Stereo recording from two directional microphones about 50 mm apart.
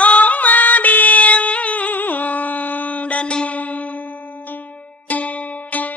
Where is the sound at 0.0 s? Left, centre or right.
Left.